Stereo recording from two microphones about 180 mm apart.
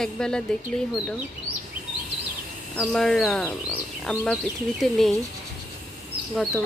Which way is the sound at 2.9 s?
5° left (ahead or behind).